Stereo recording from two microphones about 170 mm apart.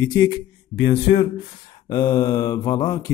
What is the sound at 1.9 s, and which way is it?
Speech, 25° left (ahead or behind).